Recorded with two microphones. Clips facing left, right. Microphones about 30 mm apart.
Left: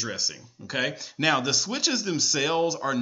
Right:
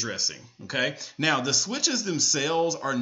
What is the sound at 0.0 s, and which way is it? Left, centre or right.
Speech, centre.